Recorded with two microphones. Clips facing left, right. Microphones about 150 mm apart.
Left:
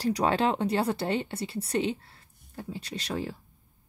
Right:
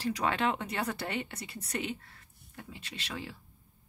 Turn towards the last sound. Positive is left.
turn(degrees=40)  # may be behind; listen again after turning